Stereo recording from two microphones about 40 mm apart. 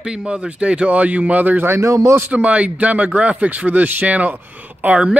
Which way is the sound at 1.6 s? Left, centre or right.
Right.